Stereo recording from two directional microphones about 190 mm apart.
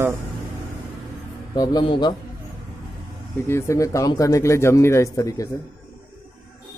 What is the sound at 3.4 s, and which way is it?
Speech, 15° left (ahead or behind).